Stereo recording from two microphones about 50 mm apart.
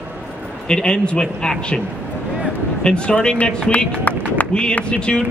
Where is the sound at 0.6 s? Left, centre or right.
Centre.